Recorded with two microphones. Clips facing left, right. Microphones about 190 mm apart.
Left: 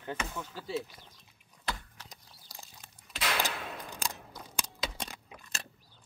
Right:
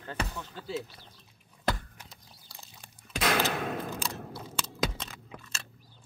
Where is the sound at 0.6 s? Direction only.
5° left (ahead or behind).